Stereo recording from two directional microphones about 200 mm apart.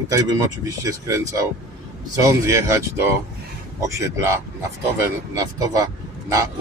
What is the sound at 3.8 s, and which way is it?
Speech, 15° right (ahead or behind).